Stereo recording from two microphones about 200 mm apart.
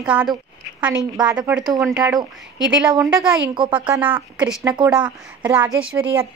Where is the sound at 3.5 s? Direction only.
25° right (ahead or behind).